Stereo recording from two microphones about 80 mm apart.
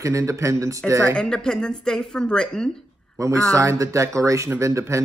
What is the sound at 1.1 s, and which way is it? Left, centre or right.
Speech, centre.